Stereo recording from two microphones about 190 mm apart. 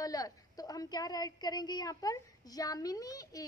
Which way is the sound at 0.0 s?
20° left (ahead or behind).